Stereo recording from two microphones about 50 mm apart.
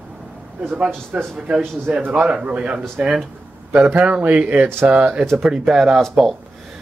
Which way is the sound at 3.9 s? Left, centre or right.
Right.